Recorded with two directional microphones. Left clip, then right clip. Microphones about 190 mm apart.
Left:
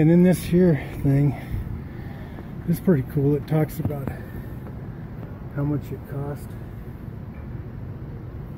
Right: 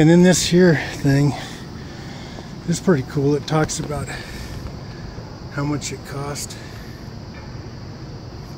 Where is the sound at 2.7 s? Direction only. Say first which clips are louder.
Right 4 dB; centre (ahead or behind).